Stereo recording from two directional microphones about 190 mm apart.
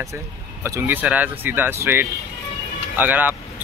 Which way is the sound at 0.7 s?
10° right (ahead or behind).